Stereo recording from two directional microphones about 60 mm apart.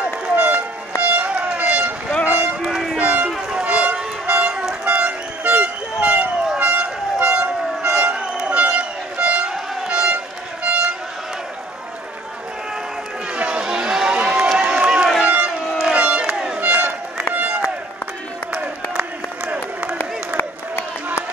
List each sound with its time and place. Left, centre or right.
0.0 s run: right
1.0 s music: right
2.2 s run: centre
3.5 s vehicle: centre
4.8 s toot: centre
6.6 s vehicle: right
8.5 s music: centre
13.4 s run: centre
15.8 s crowd: centre
16.5 s crowd: right
17.3 s run: right
18.5 s a sound: right
20.3 s a sound: left